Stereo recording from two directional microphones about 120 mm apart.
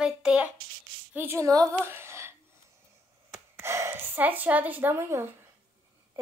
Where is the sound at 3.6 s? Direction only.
20° right (ahead or behind).